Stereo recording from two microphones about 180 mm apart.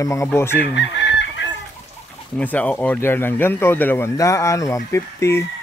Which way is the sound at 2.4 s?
10° left (ahead or behind).